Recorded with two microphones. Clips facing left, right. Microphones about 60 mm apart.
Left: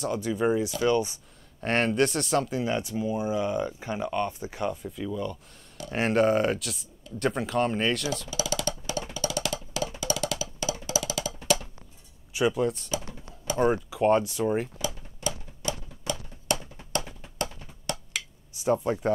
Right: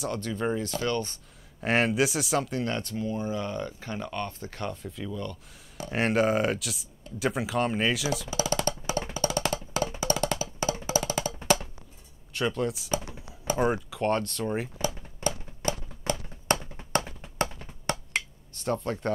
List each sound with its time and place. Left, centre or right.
0.0 s speech: centre
1.6 s speech: centre
5.9 s speech: centre
8.4 s music: right
12.4 s speech: centre
15.2 s a sound: right
18.6 s speech: centre